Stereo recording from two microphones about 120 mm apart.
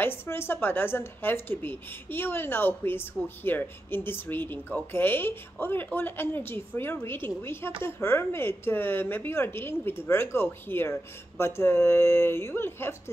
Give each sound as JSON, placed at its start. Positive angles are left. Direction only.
{"t": 0.0, "sound": "a woman's voice", "side_deg": 20}